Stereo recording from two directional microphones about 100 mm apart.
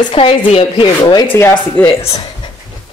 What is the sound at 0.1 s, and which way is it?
Speech, 80° left.